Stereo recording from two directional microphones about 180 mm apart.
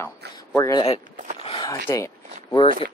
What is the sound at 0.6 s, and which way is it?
Speech, 20° left (ahead or behind).